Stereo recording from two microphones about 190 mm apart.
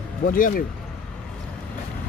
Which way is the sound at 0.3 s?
50° left (ahead or behind).